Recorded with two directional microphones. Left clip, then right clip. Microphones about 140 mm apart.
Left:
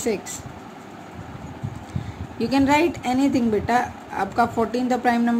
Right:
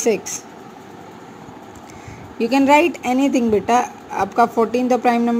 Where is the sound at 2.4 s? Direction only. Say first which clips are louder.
Right 5 dB; 30° right (ahead or behind).